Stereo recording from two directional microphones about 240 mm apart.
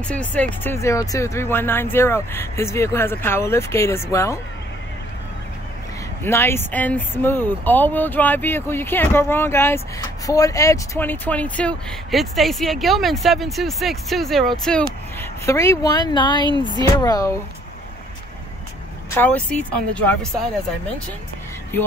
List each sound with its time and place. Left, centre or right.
0.1 s speech: centre
6.2 s speech: centre
19.1 s speech: centre